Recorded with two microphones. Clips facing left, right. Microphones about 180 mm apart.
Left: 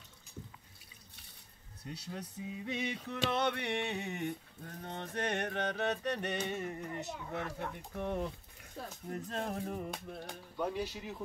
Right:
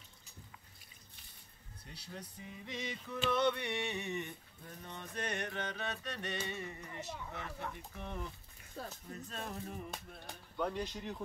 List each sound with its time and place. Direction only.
2.3 s music: 70° left (ahead or behind)
10.6 s speech: 5° left (ahead or behind)